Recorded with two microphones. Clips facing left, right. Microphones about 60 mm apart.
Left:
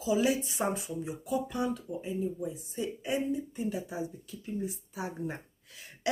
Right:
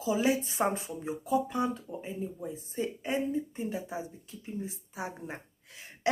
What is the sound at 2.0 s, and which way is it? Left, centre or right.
Speech, right.